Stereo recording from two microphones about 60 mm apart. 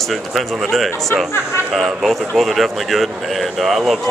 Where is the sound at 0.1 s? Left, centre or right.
Centre.